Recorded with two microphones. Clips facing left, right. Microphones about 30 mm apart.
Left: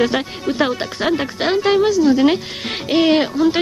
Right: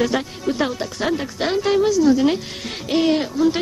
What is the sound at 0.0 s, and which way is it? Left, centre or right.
Speech, left.